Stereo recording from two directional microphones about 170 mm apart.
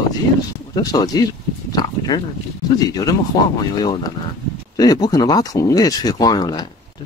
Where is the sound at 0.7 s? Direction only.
20° left (ahead or behind).